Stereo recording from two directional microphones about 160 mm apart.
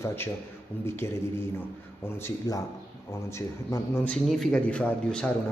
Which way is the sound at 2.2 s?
20° left (ahead or behind).